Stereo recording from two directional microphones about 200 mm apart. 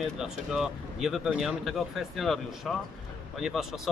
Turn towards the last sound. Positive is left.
turn(degrees=0)  # may be behind; listen again after turning